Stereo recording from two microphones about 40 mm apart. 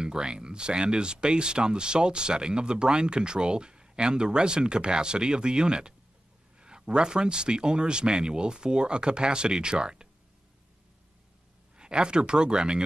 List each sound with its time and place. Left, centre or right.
0.0 s speech: right
11.7 s speech: right